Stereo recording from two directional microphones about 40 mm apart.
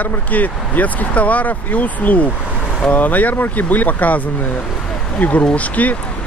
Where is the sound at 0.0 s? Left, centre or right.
Left.